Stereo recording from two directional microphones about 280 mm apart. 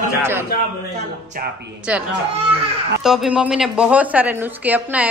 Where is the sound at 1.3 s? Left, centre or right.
Right.